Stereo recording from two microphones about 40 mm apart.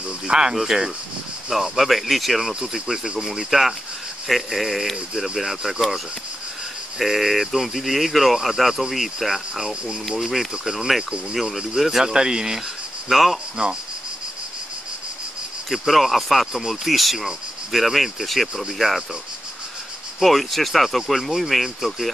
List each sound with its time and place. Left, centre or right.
0.3 s speech: centre
1.6 s speech: centre
7.0 s speech: centre
13.1 s speech: centre
13.6 s insect: right
15.7 s speech: centre
20.2 s speech: centre